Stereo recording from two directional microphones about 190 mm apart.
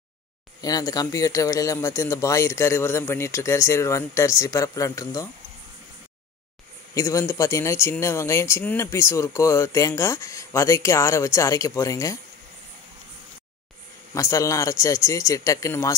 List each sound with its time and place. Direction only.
0.6 s speech: 20° left (ahead or behind)
6.9 s speech: 15° left (ahead or behind)
14.1 s speech: 15° left (ahead or behind)